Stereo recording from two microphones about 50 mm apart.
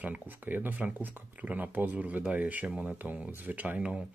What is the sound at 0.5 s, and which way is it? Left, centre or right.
Speech, right.